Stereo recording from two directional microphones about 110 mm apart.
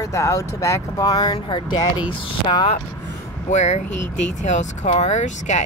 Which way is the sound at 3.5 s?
90° left.